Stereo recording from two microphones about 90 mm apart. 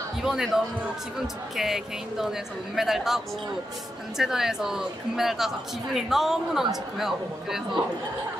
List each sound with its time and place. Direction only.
0.2 s a woman's voice: 5° right (ahead or behind)
4.2 s a woman's voice: 5° right (ahead or behind)